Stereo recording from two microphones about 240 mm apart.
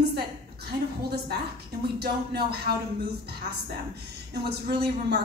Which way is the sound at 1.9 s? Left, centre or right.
Right.